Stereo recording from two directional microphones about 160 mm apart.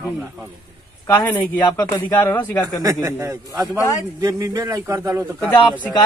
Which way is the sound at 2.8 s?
20° right (ahead or behind).